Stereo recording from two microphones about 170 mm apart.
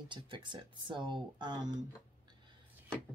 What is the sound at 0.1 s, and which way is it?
Speech, 30° right (ahead or behind).